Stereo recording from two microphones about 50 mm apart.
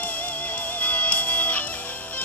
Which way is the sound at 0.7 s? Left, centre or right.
Left.